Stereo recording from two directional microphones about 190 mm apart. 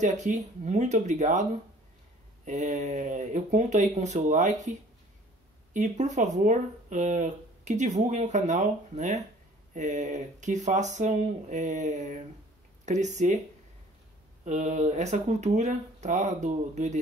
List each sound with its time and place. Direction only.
0.0 s speech: 40° right (ahead or behind)
5.7 s speech: 40° right (ahead or behind)
14.4 s speech: 40° right (ahead or behind)